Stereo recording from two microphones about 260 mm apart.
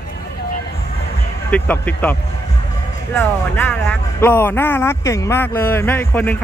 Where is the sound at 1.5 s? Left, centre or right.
Centre.